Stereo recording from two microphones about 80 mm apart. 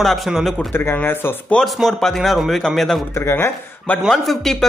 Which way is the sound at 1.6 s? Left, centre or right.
Centre.